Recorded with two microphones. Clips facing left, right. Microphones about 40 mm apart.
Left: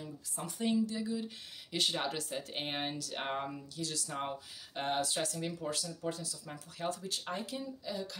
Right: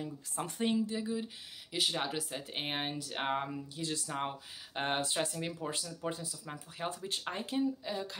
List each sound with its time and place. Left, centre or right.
0.0 s speech: right
1.7 s speech: centre; by 7.0 s right
7.0 s speech: right